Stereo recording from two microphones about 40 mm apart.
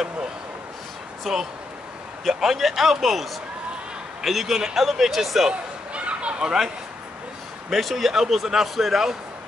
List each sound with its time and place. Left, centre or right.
1.3 s a man's voice: centre
5.5 s a sound: right
7.7 s a man's voice: centre